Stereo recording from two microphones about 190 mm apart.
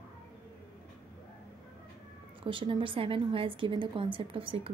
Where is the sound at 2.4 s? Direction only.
25° right (ahead or behind).